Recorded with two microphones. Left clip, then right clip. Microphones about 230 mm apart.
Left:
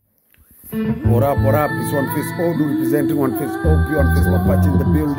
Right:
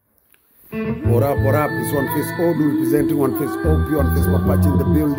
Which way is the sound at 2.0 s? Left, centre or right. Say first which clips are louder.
Right 1 dB; left.